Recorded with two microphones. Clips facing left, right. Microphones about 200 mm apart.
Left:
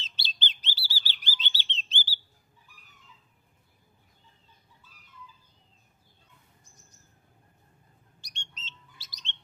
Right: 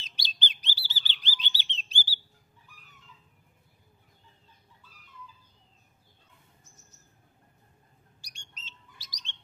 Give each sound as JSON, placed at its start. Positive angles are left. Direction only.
{"t": 0.0, "sound": "bird", "side_deg": -15}
{"t": 8.2, "sound": "bird", "side_deg": -10}